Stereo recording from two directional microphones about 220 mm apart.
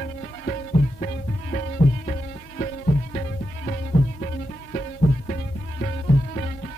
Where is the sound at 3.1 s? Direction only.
35° left (ahead or behind).